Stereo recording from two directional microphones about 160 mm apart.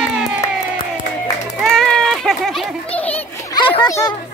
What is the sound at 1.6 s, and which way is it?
Children playing, 5° left (ahead or behind).